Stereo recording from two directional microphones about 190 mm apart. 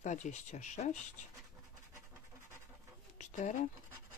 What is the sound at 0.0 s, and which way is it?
Speech, 40° left (ahead or behind).